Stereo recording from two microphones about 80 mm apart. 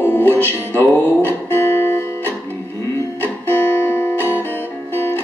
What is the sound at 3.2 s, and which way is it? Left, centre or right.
Music, left.